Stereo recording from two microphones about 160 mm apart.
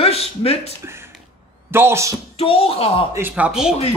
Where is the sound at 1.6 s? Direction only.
15° right (ahead or behind).